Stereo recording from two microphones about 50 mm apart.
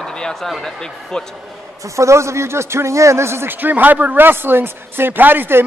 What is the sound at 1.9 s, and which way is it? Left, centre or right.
A man's voice, right.